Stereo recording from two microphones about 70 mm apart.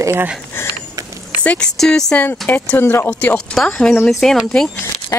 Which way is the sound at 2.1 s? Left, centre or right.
Left.